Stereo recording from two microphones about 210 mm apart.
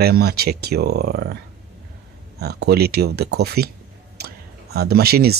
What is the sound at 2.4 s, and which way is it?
Speech, 50° right (ahead or behind).